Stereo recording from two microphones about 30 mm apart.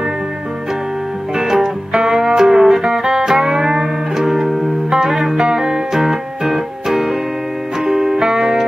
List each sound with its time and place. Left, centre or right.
1.4 s music: centre
4.5 s music: centre
4.9 s music: centre